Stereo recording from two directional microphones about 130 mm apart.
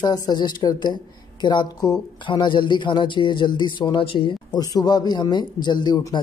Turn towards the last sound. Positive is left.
turn(degrees=35)  # may be behind; listen again after turning